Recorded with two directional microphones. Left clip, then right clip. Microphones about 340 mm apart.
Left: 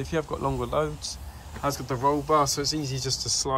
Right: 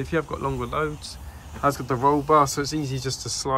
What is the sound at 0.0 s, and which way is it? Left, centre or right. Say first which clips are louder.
Speech: right 2 dB; centre.